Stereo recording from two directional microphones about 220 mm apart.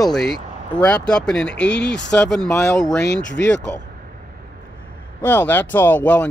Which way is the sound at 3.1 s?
55° left (ahead or behind).